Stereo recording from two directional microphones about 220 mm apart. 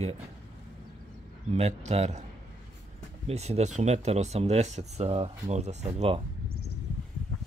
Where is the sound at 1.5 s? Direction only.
30° right (ahead or behind).